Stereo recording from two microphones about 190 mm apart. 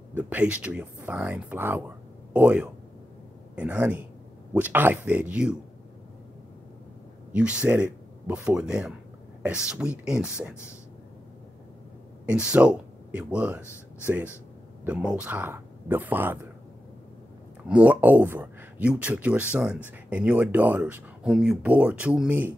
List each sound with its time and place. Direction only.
0.1 s speech: 10° right (ahead or behind)
7.3 s speech: 5° right (ahead or behind)
12.4 s speech: 5° right (ahead or behind)
17.6 s speech: 5° right (ahead or behind)